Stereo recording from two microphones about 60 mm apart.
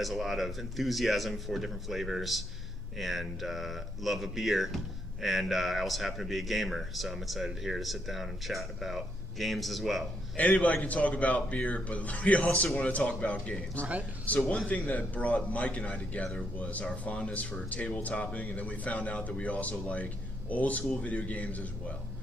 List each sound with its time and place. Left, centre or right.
0.0 s speech: centre
10.3 s a man's voice: left